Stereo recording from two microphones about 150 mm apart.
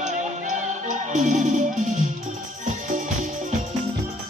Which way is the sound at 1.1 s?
60° right (ahead or behind).